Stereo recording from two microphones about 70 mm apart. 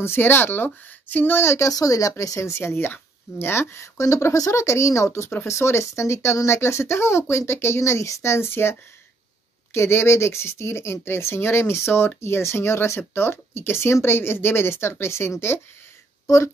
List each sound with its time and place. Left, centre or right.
0.0 s speech: left
1.7 s speech: left
9.8 s speech: left